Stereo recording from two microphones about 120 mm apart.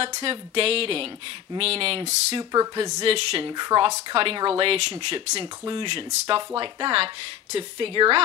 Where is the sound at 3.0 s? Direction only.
50° right (ahead or behind).